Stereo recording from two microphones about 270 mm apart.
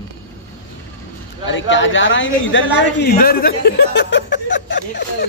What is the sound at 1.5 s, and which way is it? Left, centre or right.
A man's voice, left.